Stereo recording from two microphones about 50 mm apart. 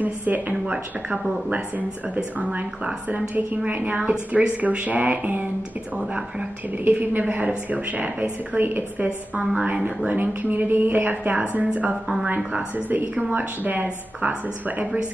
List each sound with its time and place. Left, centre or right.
0.0 s a woman's voice: right
2.3 s a woman's voice: right
6.9 s a woman's voice: right